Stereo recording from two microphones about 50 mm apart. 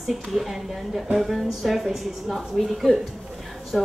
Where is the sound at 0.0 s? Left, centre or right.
Centre.